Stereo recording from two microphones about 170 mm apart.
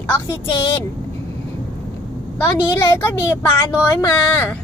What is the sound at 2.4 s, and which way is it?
A woman's voice, 15° left (ahead or behind).